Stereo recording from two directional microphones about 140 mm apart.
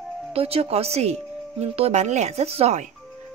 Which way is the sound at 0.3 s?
45° right (ahead or behind).